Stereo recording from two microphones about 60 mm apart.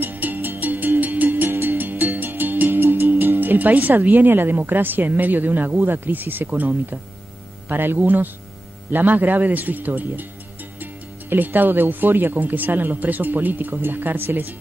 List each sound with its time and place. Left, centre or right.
0.0 s music: right
7.6 s speech: right